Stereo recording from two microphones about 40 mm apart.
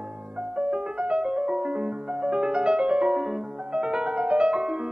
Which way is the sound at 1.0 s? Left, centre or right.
Right.